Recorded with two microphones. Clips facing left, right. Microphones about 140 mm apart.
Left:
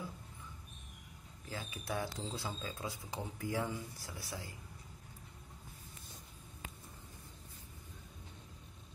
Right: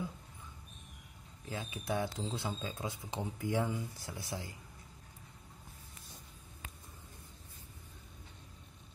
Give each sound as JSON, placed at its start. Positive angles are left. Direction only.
{"t": 1.5, "sound": "speech", "side_deg": -25}